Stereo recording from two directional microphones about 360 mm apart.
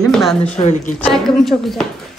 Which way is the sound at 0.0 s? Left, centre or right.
Centre.